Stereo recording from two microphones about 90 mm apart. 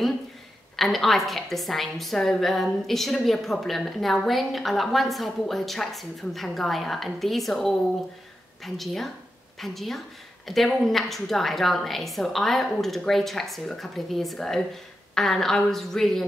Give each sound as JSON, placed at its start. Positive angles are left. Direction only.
{"t": 0.7, "sound": "a woman's voice", "side_deg": 0}